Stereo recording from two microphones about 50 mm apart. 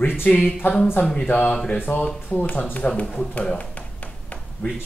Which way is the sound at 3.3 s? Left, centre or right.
Left.